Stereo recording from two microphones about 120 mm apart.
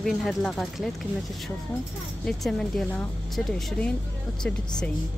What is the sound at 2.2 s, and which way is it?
Speech, 5° left (ahead or behind).